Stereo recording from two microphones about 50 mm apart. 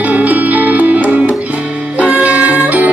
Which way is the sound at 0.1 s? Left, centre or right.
Right.